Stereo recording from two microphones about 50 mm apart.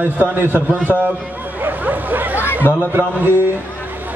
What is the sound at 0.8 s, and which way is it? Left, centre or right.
Speech, right.